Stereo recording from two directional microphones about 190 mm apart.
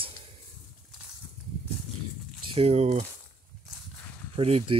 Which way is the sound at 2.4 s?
30° right (ahead or behind).